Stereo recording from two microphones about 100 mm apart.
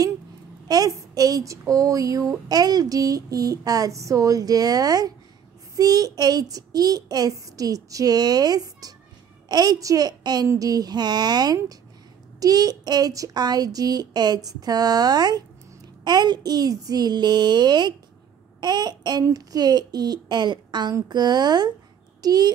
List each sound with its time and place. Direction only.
0.7 s child singing: 40° right (ahead or behind)
22.2 s speech: 40° right (ahead or behind)